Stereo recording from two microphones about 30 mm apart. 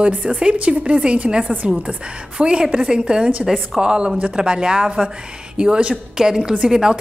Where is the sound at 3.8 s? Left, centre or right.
Right.